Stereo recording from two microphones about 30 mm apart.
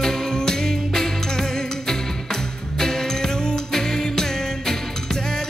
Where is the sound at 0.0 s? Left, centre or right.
Centre.